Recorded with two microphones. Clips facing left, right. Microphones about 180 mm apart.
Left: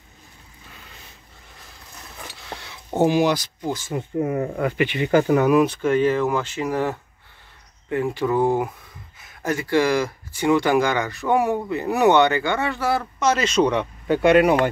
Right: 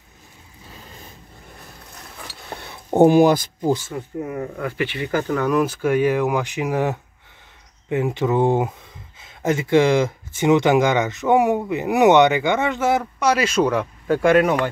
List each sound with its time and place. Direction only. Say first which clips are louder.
0.7 s a sound: right 5 dB; 35° right (ahead or behind)
2.9 s speech: right 5 dB; 50° right (ahead or behind)
3.9 s speech: left 4 dB; 20° left (ahead or behind)
5.6 s speech: even; 5° right (ahead or behind)